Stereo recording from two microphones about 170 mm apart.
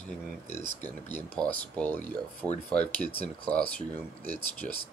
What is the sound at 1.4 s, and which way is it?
Speech, 10° left (ahead or behind).